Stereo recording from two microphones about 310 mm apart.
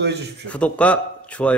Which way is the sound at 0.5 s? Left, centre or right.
Centre.